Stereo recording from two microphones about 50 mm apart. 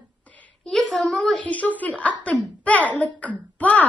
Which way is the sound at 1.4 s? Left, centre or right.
Left.